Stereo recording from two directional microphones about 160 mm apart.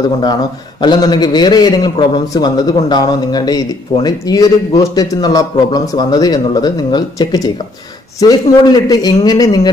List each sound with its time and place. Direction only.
0.2 s a man's voice: 25° left (ahead or behind)